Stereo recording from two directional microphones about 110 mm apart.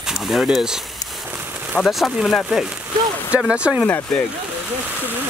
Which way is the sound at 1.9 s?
Centre (ahead or behind).